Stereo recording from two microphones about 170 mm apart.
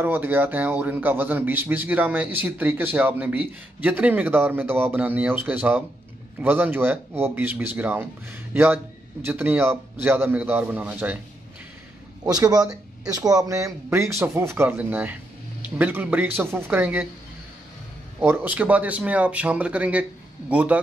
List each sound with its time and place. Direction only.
0.0 s a man's voice: 10° right (ahead or behind)
12.3 s a man's voice: 20° right (ahead or behind)
18.2 s a man's voice: 10° right (ahead or behind)